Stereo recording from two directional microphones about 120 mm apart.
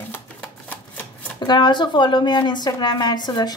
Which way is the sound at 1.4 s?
40° left (ahead or behind).